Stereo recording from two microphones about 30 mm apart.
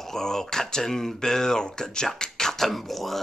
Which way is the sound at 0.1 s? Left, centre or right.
Centre.